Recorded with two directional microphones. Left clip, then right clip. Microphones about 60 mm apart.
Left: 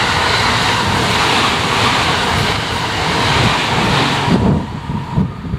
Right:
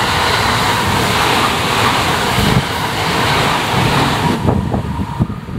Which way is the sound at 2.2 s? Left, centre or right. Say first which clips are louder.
Right 1 dB; left.